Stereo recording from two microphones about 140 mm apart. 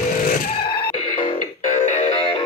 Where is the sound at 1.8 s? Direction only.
55° left (ahead or behind).